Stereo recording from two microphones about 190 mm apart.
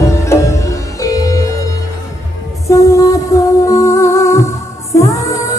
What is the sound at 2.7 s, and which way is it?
Music, 15° left (ahead or behind).